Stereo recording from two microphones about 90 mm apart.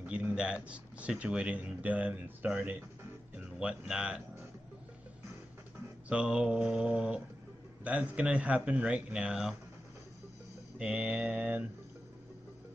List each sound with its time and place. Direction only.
0.0 s a sound: 15° right (ahead or behind)
0.7 s speech: 15° right (ahead or behind)
6.0 s speech: 10° right (ahead or behind)
10.8 s speech: 15° right (ahead or behind)